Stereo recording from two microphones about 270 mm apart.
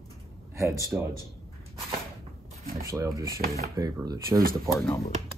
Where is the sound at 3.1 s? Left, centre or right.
Centre.